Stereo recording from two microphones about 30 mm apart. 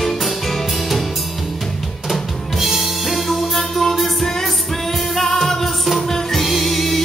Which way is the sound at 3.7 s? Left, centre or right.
Centre.